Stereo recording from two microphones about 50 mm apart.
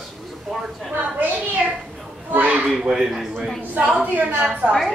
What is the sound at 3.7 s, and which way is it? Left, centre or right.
A woman's voice, right.